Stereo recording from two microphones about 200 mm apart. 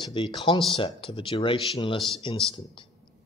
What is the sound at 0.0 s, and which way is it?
A man's voice, 25° left (ahead or behind).